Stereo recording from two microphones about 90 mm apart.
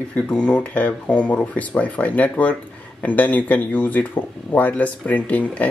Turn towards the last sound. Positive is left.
turn(degrees=15)  # may be behind; listen again after turning